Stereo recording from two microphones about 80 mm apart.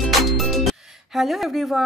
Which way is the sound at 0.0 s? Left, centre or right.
Centre.